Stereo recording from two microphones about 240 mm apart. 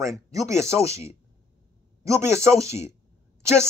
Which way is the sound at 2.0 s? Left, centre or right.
Centre.